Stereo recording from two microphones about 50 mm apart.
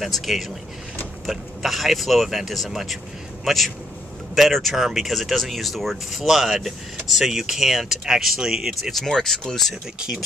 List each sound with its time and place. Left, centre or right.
0.0 s a man's voice: centre
8.9 s speech: centre